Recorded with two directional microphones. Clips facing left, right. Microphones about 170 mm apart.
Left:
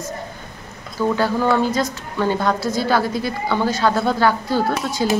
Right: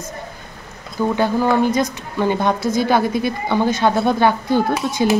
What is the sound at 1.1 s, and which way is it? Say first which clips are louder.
A woman's voice: right 2 dB; 20° right (ahead or behind).